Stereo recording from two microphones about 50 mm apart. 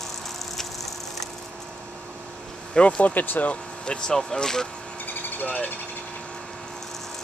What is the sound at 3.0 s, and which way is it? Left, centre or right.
Speech, left.